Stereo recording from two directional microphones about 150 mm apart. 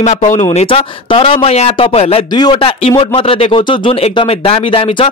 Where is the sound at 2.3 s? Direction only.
30° left (ahead or behind).